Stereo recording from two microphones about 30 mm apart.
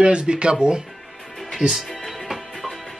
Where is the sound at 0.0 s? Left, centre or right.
Right.